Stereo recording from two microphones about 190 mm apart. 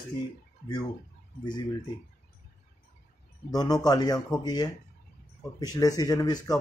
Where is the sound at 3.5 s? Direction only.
20° left (ahead or behind).